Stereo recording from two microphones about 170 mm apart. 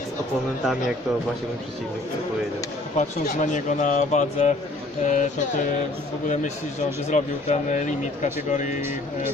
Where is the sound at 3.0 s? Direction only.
45° left (ahead or behind).